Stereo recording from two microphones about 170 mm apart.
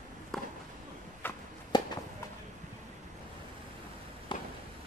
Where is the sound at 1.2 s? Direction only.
10° left (ahead or behind).